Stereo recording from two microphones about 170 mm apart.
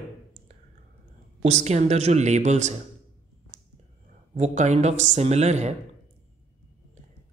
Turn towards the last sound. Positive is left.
turn(degrees=-40)  # may be behind; listen again after turning